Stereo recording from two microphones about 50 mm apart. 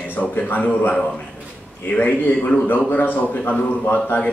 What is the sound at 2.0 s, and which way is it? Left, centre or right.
A man's voice, left.